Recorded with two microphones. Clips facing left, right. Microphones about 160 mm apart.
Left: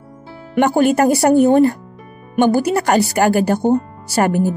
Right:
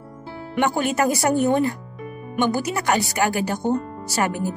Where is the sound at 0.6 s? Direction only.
40° left (ahead or behind).